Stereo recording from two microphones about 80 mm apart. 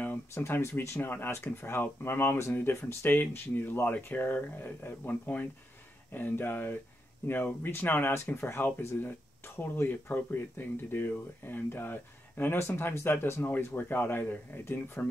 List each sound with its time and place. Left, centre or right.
0.3 s speech: left